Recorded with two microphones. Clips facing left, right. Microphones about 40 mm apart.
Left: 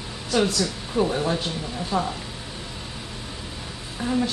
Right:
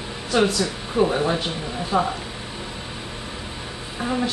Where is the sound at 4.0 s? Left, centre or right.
Centre.